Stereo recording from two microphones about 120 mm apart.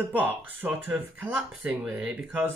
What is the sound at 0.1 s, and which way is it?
Speech, 15° right (ahead or behind).